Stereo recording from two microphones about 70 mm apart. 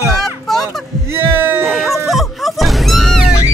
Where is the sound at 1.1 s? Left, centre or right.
Right.